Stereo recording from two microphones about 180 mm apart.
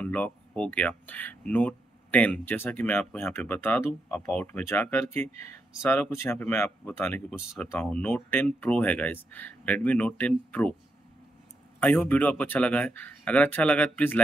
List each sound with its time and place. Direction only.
0.0 s speech: 5° left (ahead or behind)
11.8 s speech: 10° left (ahead or behind)